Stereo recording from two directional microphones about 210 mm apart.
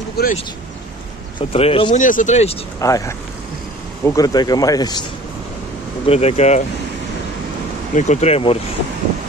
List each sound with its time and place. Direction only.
0.2 s speech: 50° left (ahead or behind)
1.5 s speech: 25° left (ahead or behind)
2.0 s speech: 40° left (ahead or behind)
2.8 s speech: 15° left (ahead or behind)
6.0 s speech: 30° left (ahead or behind)
7.9 s speech: 35° left (ahead or behind)